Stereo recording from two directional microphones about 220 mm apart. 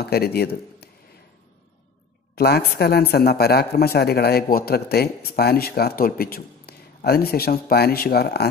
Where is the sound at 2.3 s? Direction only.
45° left (ahead or behind).